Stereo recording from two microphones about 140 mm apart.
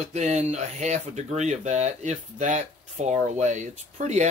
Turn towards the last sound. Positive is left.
turn(degrees=-60)  # may be behind; listen again after turning